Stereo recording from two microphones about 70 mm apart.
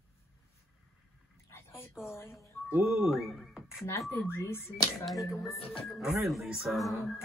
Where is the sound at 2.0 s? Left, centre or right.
Centre.